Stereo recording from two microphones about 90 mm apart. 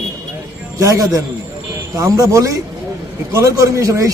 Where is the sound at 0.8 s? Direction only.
35° right (ahead or behind).